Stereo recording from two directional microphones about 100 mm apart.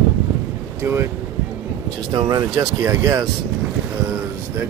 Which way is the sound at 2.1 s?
40° right (ahead or behind).